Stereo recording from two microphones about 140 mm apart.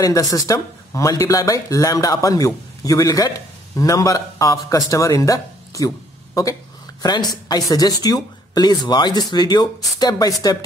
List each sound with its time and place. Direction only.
0.0 s speech: 25° left (ahead or behind)